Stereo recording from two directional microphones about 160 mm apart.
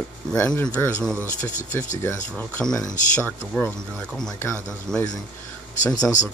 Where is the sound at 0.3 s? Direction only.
5° left (ahead or behind).